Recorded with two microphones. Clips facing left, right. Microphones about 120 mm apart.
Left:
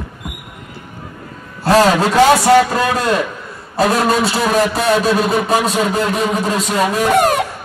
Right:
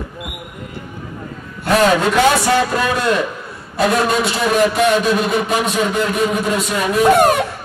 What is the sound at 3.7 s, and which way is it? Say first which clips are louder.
A man's voice: left 1 dB; 35° left (ahead or behind).